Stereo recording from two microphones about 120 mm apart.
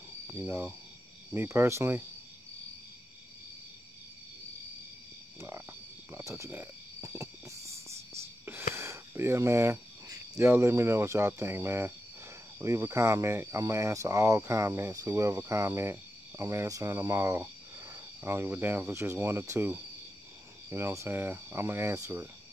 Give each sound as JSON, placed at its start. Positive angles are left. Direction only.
{"t": 0.3, "sound": "speech", "side_deg": -20}
{"t": 5.4, "sound": "cricket", "side_deg": -25}
{"t": 10.5, "sound": "speech", "side_deg": -20}